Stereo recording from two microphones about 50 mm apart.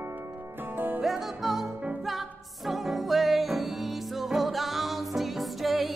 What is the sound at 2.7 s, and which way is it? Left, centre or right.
Music, centre.